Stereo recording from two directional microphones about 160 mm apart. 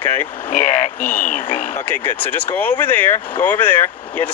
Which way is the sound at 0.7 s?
50° left (ahead or behind).